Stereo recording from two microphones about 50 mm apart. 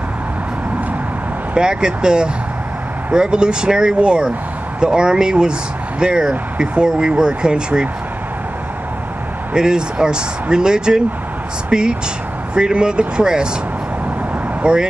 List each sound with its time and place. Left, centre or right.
1.5 s speech: centre
9.5 s speech: centre
14.6 s speech: centre